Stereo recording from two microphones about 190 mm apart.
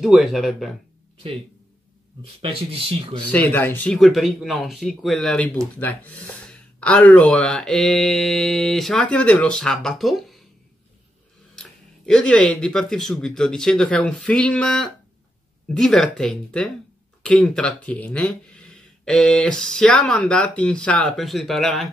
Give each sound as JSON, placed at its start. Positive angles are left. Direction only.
{"t": 0.0, "sound": "speech", "side_deg": 0}
{"t": 2.4, "sound": "speech", "side_deg": -30}
{"t": 3.3, "sound": "speech", "side_deg": 5}
{"t": 12.1, "sound": "speech", "side_deg": 5}